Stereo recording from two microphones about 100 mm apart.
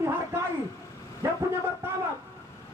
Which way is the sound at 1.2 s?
25° right (ahead or behind).